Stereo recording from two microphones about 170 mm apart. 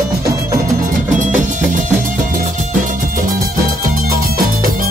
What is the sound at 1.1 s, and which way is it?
Music, 45° right (ahead or behind).